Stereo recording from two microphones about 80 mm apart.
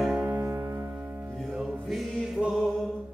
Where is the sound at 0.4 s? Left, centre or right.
Right.